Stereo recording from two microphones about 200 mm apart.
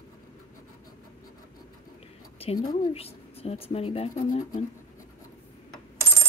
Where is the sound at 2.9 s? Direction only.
30° left (ahead or behind).